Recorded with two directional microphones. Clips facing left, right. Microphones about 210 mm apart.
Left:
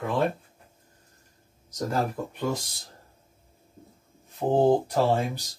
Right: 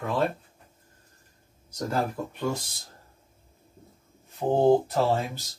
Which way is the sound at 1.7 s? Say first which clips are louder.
Left 1 dB; 5° left (ahead or behind).